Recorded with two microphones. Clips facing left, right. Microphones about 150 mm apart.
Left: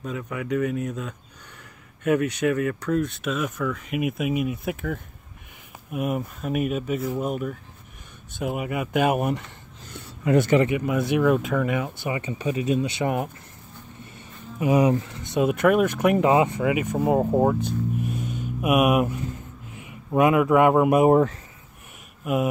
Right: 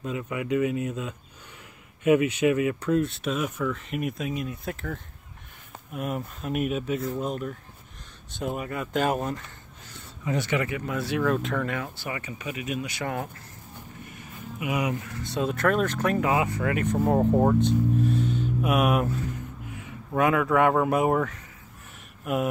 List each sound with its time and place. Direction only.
0.0 s speech: centre (ahead or behind)
4.2 s speech: 15° left (ahead or behind)
5.9 s speech: 5° left (ahead or behind)
10.2 s a man's voice: 55° left (ahead or behind)
10.7 s speech: 15° left (ahead or behind)
14.0 s speech: 30° left (ahead or behind)
16.7 s speech: 10° left (ahead or behind); by 21.4 s 30° left (ahead or behind)
22.2 s speech: 5° left (ahead or behind)